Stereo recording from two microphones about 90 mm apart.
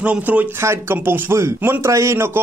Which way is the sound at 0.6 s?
30° right (ahead or behind).